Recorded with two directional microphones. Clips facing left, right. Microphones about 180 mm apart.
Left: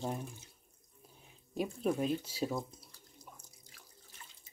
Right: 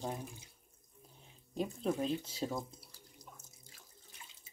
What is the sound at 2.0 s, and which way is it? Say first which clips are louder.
Speech: left 2 dB; 10° left (ahead or behind).